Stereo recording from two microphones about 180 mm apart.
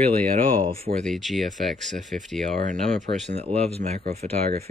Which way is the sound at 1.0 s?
Centre (ahead or behind).